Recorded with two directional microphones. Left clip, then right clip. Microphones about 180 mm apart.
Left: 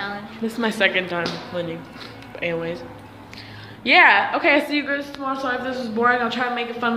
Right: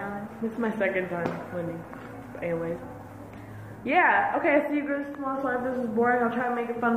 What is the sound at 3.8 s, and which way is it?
A woman's voice, 40° left (ahead or behind).